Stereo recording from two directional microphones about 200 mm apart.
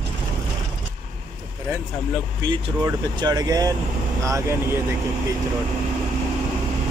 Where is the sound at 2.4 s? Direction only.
20° right (ahead or behind).